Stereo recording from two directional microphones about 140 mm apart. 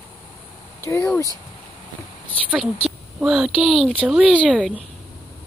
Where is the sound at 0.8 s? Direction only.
20° left (ahead or behind).